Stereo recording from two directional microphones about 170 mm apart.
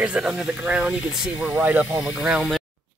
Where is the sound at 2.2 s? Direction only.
Centre (ahead or behind).